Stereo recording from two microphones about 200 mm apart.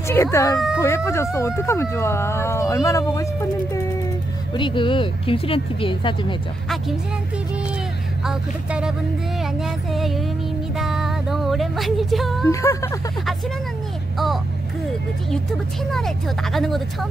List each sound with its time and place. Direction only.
0.1 s speech: 15° left (ahead or behind)
4.6 s speech: 25° left (ahead or behind)
8.3 s speech: 5° right (ahead or behind)
9.4 s music: centre (ahead or behind)
12.4 s speech: 15° left (ahead or behind)
14.1 s a sound: centre (ahead or behind)
16.5 s speech: centre (ahead or behind)